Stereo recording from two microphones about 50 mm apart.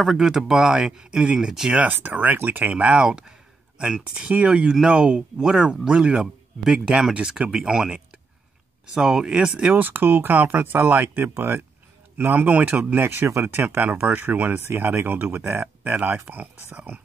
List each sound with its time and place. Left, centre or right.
0.0 s speech: centre
1.8 s speech: right
2.7 s speech: right
7.2 s speech: centre
9.8 s speech: right
11.3 s speech: right
16.0 s speech: right